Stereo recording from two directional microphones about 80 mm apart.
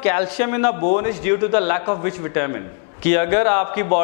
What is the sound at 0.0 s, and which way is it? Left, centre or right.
A man's voice, centre.